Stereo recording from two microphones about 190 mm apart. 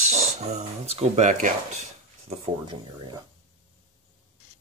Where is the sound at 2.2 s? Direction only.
30° right (ahead or behind).